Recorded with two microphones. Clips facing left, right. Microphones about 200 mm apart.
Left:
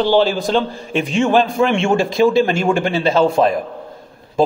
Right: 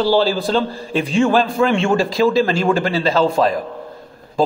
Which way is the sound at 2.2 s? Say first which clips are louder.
Left 1 dB; 10° left (ahead or behind).